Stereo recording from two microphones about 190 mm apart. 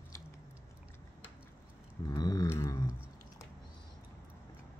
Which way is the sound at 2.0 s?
20° left (ahead or behind).